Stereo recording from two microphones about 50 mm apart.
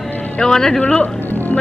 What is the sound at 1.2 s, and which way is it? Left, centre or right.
Music, left.